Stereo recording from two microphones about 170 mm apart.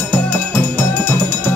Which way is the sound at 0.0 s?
10° left (ahead or behind).